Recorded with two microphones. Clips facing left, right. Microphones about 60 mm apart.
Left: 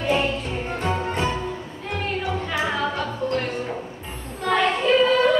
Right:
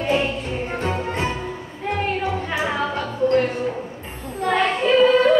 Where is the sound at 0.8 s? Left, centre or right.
Right.